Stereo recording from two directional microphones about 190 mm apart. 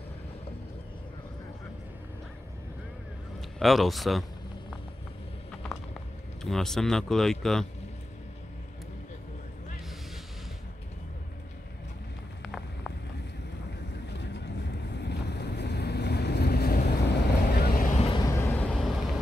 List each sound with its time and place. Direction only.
3.3 s speech: centre (ahead or behind)
5.5 s mechanisms: 5° left (ahead or behind)
6.4 s speech: centre (ahead or behind)
12.4 s vehicle: centre (ahead or behind)
14.1 s boat: 65° left (ahead or behind); by 18.0 s 45° left (ahead or behind)
18.0 s vehicle: 20° left (ahead or behind); by 19.0 s centre (ahead or behind)